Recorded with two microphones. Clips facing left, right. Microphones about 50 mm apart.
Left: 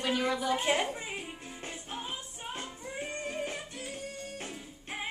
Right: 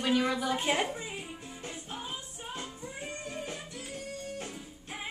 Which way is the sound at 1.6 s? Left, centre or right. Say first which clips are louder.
Left 1 dB; left.